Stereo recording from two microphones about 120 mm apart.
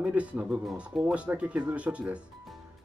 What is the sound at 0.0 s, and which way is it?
Speech, 10° right (ahead or behind).